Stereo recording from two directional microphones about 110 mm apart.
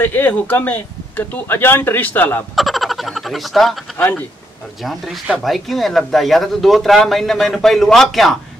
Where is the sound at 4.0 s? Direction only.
15° left (ahead or behind).